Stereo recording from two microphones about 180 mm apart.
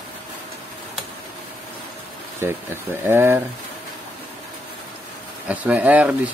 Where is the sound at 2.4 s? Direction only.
15° right (ahead or behind).